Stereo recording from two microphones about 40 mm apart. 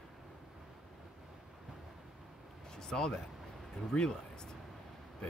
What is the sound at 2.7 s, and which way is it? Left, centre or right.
Speech, centre.